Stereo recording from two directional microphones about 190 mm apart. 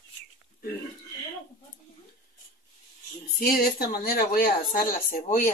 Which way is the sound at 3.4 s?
50° left (ahead or behind).